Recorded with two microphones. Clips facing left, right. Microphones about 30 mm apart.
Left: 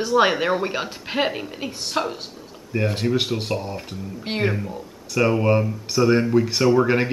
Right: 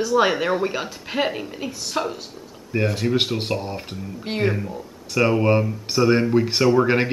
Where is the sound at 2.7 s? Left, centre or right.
Centre.